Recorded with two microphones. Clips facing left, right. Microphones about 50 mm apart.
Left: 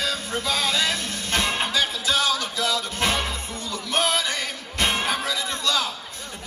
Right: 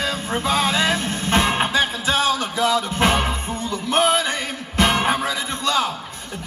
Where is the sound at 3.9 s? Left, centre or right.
Right.